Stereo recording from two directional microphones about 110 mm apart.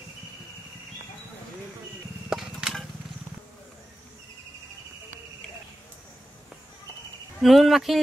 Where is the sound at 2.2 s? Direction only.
5° right (ahead or behind).